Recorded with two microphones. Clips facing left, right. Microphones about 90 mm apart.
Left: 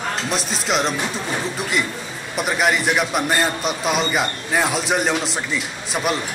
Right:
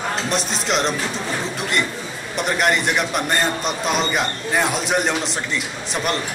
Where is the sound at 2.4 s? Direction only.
5° left (ahead or behind).